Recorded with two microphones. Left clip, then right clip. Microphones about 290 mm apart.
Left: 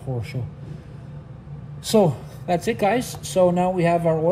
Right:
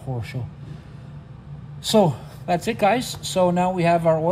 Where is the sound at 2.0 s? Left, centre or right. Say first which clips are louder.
Even; right.